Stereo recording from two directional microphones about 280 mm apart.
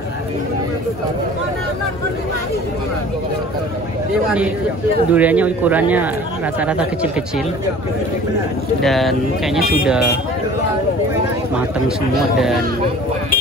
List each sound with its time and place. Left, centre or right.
5.1 s speech: centre
8.8 s speech: centre